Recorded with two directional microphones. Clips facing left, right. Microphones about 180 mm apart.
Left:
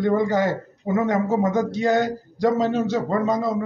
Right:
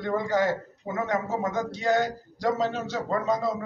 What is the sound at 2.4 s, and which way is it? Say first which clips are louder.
Speech: left 6 dB; 20° left (ahead or behind).